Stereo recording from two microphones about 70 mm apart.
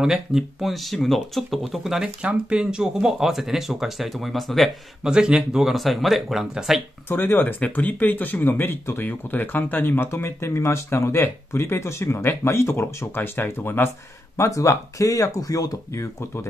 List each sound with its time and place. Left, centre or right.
0.0 s speech: centre
5.0 s speech: centre
7.1 s speech: left
14.3 s speech: left
15.9 s speech: left